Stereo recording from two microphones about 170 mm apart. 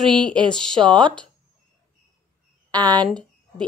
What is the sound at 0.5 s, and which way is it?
Speech, 5° left (ahead or behind).